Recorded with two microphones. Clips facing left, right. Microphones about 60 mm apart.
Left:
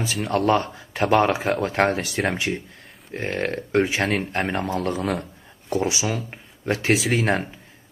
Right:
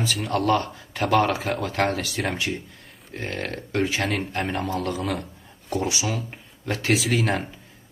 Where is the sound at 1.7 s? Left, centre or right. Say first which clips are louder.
Left 3 dB; left.